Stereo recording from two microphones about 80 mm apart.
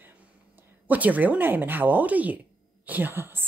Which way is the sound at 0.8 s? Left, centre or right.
Right.